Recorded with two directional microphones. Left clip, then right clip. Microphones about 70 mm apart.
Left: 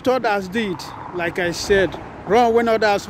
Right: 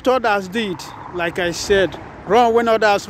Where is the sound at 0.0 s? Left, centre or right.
Left.